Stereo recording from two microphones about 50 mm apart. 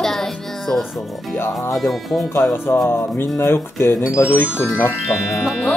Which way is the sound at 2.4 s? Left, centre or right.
Left.